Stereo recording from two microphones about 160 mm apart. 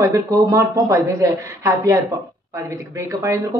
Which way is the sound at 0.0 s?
20° right (ahead or behind).